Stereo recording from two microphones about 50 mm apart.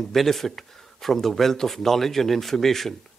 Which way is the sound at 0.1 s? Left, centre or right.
Centre.